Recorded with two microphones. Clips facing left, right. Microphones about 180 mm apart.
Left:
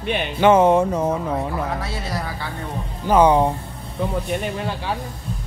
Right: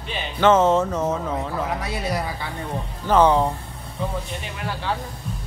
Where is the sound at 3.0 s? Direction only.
10° left (ahead or behind).